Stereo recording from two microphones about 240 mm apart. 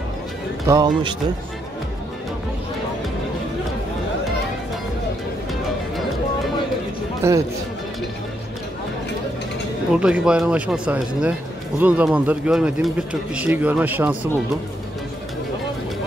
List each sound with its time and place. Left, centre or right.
0.7 s speech: centre
7.2 s speech: centre
9.9 s speech: centre